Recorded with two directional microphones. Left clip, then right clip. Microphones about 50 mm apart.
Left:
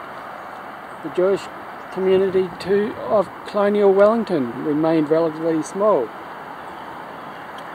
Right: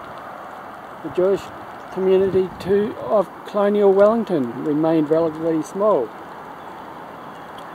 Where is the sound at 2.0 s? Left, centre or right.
Centre.